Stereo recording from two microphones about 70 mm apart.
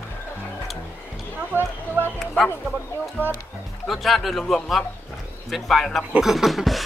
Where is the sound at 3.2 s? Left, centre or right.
Right.